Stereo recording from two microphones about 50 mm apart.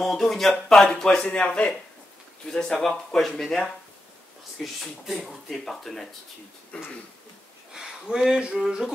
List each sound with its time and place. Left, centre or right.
0.0 s speech: centre
1.2 s speech: left; by 3.6 s centre
4.7 s speech: centre
7.7 s speech: centre